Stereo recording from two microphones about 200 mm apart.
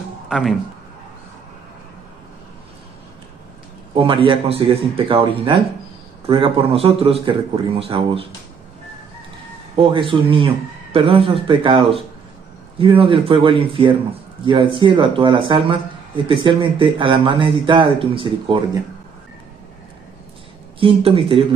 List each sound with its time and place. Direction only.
0.3 s speech: centre (ahead or behind)
3.9 s speech: 25° right (ahead or behind)
9.8 s speech: 25° right (ahead or behind)
20.8 s speech: 25° right (ahead or behind)